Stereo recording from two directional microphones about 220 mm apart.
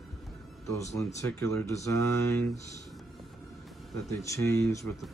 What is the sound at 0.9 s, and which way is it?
Speech, 15° left (ahead or behind).